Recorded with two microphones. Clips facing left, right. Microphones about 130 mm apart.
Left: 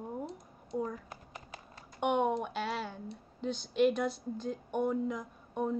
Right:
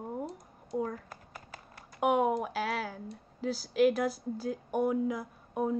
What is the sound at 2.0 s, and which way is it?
Speech, 5° right (ahead or behind).